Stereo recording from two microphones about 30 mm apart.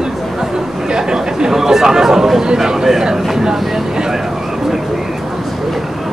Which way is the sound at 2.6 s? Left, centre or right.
Centre.